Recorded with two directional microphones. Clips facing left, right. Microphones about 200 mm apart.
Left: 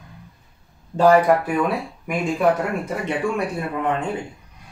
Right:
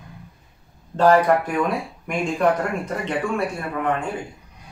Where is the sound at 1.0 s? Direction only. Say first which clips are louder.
Left 1 dB; 10° left (ahead or behind).